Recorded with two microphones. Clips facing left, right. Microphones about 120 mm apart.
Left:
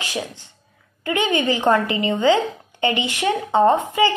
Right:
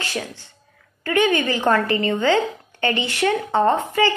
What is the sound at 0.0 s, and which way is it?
Speech, 15° left (ahead or behind).